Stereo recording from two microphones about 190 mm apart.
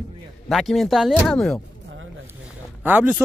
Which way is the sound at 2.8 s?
10° right (ahead or behind).